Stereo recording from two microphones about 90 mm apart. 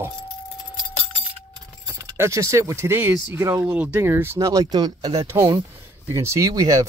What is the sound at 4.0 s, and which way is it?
Speech, 25° right (ahead or behind).